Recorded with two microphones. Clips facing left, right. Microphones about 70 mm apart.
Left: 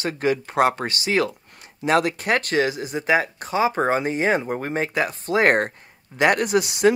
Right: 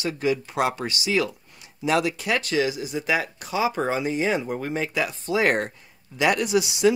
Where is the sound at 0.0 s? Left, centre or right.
Left.